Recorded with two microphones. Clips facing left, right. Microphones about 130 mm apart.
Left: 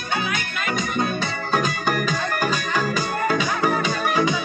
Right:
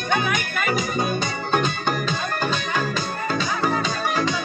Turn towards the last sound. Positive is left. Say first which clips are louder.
# left 2 dB
turn(degrees=10)  # may be behind; listen again after turning